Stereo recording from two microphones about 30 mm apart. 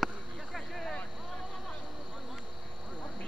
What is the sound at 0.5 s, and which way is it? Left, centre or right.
Vehicle, centre.